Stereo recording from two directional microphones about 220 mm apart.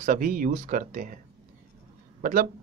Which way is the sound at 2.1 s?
40° right (ahead or behind).